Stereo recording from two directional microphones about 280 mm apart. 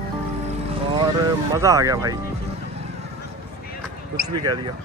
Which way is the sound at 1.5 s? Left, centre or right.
Centre.